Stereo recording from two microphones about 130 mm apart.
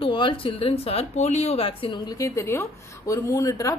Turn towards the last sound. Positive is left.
turn(degrees=25)  # may be behind; listen again after turning